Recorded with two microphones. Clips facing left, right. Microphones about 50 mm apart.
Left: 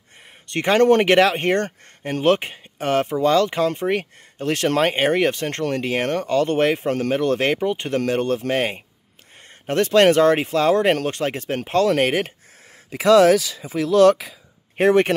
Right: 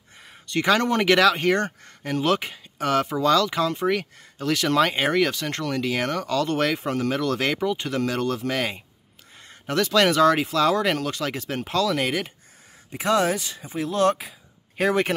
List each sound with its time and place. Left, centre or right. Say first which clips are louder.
0.5 s speech: left 5 dB; left
12.9 s speech: left 9 dB; left
14.8 s speech: left 6 dB; left